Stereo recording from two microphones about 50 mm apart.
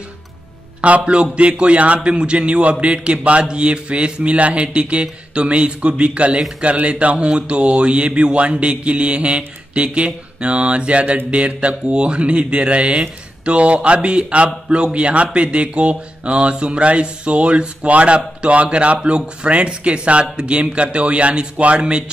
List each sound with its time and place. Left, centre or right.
0.7 s speech: right